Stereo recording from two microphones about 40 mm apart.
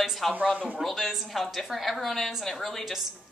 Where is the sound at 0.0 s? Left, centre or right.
Centre.